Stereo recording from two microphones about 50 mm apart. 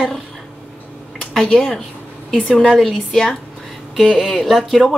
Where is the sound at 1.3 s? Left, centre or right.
Centre.